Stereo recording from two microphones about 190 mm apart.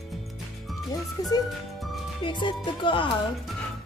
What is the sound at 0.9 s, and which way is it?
Speech, 20° left (ahead or behind).